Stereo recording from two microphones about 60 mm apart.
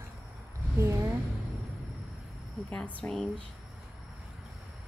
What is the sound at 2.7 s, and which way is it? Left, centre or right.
Speech, left.